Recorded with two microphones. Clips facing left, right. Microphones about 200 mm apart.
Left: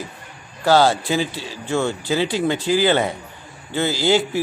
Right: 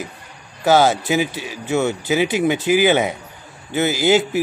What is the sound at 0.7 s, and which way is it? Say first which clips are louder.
Speech: right 1 dB; 15° right (ahead or behind).